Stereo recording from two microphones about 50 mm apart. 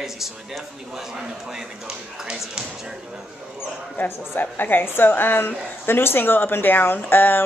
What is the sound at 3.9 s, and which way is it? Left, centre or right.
A woman's voice, left.